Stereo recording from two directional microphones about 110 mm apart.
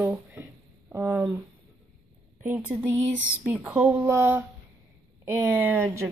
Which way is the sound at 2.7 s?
15° right (ahead or behind).